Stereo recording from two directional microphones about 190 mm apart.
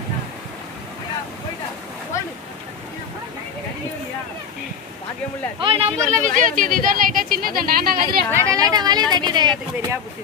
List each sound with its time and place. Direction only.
2.1 s boat: 15° left (ahead or behind)
5.6 s speech: 30° right (ahead or behind)
6.0 s speech: 40° right (ahead or behind)
8.3 s speech: 15° right (ahead or behind)